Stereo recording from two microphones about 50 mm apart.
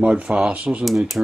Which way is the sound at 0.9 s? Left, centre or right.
Centre.